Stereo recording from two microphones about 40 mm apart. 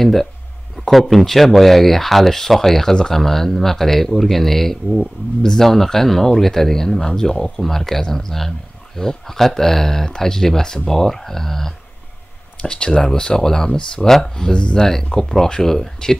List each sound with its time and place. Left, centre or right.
0.0 s speech: centre
12.6 s speech: left
14.3 s speech: left